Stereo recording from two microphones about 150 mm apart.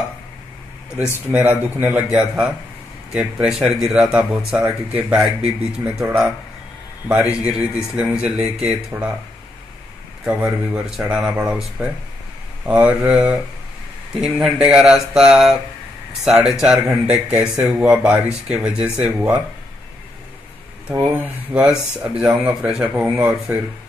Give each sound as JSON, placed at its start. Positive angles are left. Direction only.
{"t": 1.3, "sound": "speech", "side_deg": -10}
{"t": 7.4, "sound": "speech", "side_deg": -5}
{"t": 10.2, "sound": "speech", "side_deg": -5}
{"t": 20.9, "sound": "speech", "side_deg": -10}